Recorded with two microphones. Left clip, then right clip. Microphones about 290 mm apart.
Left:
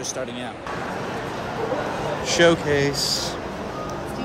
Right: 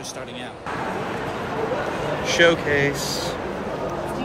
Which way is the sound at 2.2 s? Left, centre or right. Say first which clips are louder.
Even; centre.